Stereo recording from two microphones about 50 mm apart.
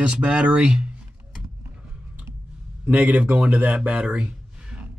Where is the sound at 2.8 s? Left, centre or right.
Right.